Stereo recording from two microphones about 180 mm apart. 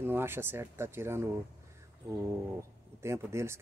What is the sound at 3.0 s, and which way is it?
Speech, 15° right (ahead or behind).